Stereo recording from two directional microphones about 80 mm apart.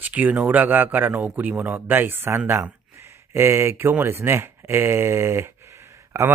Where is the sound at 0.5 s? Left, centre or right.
Right.